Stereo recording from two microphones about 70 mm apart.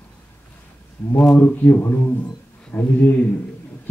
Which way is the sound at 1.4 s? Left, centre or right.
Left.